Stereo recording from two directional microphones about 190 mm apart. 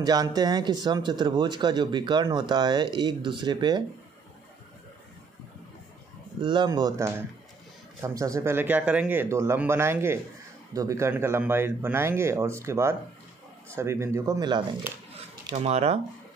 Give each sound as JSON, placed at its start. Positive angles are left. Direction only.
{"t": 0.0, "sound": "speech", "side_deg": -20}
{"t": 6.4, "sound": "speech", "side_deg": -25}
{"t": 15.5, "sound": "speech", "side_deg": -35}